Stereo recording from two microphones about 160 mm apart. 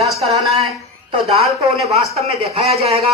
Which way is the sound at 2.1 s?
40° right (ahead or behind).